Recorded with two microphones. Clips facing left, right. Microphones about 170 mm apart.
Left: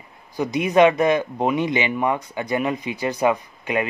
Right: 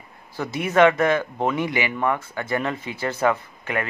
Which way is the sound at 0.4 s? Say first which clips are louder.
Left 2 dB; 15° left (ahead or behind).